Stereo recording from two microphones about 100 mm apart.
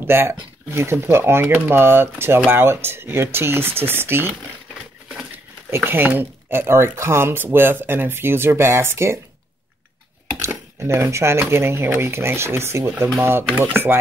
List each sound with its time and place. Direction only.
0.0 s speech: 25° right (ahead or behind)
5.7 s speech: 20° right (ahead or behind)
10.5 s speech: 25° right (ahead or behind)